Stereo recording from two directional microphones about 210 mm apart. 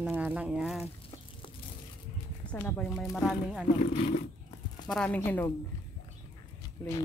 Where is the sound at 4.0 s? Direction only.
35° left (ahead or behind).